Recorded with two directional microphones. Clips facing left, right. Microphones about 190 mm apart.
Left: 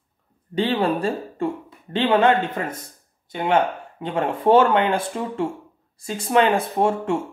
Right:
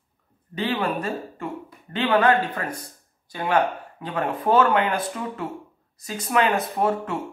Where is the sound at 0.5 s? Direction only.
30° left (ahead or behind).